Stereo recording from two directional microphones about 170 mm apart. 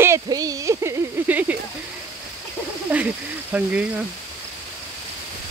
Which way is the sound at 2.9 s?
10° right (ahead or behind).